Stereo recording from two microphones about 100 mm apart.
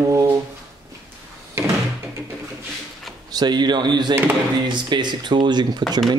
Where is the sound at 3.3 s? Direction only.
45° right (ahead or behind).